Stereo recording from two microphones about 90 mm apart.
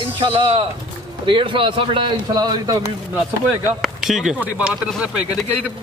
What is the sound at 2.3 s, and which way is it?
Speech, 50° right (ahead or behind).